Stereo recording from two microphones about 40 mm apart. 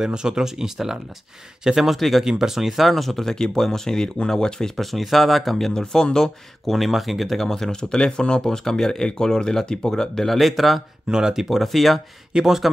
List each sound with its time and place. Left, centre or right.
0.0 s speech: centre
1.9 s speech: centre
2.2 s speech: centre
4.7 s speech: centre
5.7 s speech: centre
6.8 s speech: centre
11.1 s speech: centre
12.3 s speech: centre